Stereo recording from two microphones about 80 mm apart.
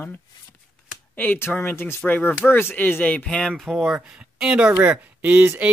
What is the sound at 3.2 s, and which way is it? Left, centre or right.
Speech, centre.